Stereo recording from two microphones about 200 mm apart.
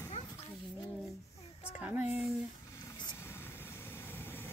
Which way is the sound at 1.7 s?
10° right (ahead or behind).